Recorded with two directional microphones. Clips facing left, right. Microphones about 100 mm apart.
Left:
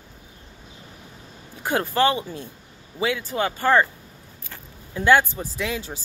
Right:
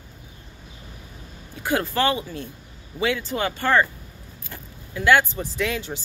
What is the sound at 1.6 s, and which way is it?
Speech, 25° left (ahead or behind).